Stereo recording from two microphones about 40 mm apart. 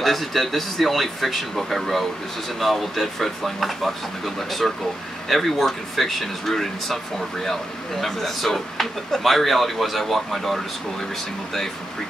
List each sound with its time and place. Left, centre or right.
0.0 s speech: centre
8.0 s speech: centre